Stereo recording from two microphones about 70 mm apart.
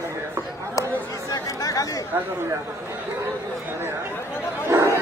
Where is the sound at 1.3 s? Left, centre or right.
Left.